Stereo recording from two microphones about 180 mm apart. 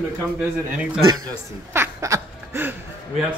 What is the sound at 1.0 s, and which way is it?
Speech, 20° right (ahead or behind).